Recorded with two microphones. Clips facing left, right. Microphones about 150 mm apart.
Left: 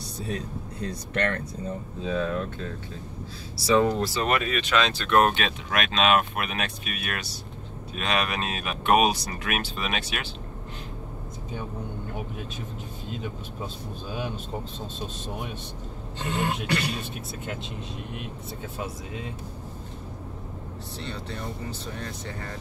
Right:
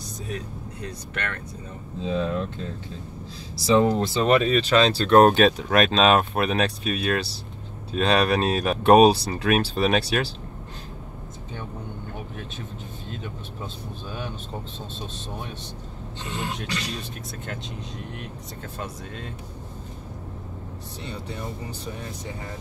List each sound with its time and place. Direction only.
0.8 s speech: 35° left (ahead or behind)
2.0 s speech: 25° right (ahead or behind)
3.7 s speech: 25° right (ahead or behind)
16.2 s speech: 55° left (ahead or behind)
17.5 s speech: 5° left (ahead or behind)
21.0 s speech: 15° right (ahead or behind)